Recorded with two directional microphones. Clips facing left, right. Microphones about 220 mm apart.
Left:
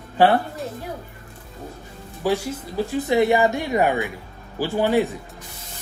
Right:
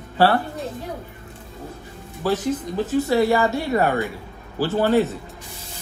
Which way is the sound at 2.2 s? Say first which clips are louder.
Right 1 dB; 10° left (ahead or behind).